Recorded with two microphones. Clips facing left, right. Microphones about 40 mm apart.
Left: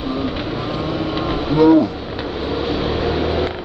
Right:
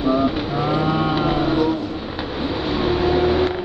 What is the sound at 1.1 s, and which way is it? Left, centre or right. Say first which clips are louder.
Vehicle: right 2 dB; centre.